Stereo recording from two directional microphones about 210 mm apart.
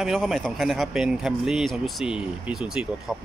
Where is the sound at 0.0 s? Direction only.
Centre (ahead or behind).